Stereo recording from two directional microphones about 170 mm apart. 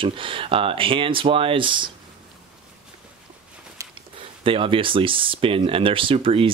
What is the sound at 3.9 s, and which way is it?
Speech, 30° right (ahead or behind).